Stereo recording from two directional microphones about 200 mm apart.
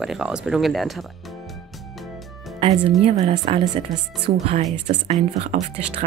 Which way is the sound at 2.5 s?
25° right (ahead or behind).